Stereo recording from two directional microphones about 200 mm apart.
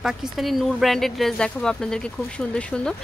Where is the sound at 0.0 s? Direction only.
Centre (ahead or behind).